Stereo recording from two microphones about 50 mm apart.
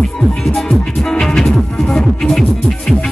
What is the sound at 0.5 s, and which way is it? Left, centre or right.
Music, centre.